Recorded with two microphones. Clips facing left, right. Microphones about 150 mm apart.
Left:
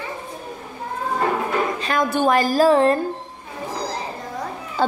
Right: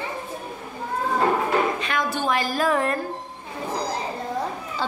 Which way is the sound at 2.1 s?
50° left (ahead or behind).